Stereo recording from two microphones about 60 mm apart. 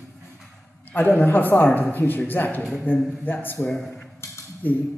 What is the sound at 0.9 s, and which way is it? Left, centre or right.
Speech, left.